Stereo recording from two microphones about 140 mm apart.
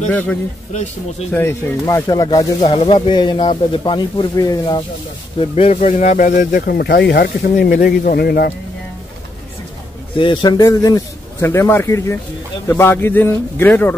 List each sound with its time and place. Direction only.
0.1 s a man's voice: 10° left (ahead or behind)
2.0 s a man's voice: 30° left (ahead or behind)
2.6 s a man's voice: 40° left (ahead or behind)
5.4 s speech: 45° left (ahead or behind)
5.8 s speech: 60° left (ahead or behind); by 8.5 s 90° left
10.1 s a man's voice: 35° left (ahead or behind); by 13.9 s 15° left (ahead or behind)